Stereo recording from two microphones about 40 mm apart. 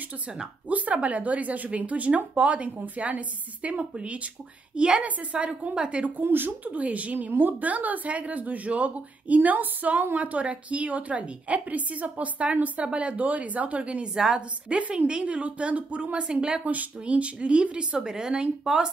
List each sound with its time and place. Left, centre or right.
0.7 s a woman's voice: right
5.0 s speech: right
6.2 s speech: right
7.2 s speech: right
14.1 s speech: centre
14.7 s a woman's voice: right
17.9 s speech: centre